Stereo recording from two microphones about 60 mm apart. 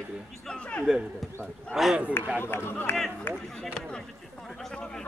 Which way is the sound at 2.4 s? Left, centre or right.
Left.